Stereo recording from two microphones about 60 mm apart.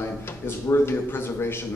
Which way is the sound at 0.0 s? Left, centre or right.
Left.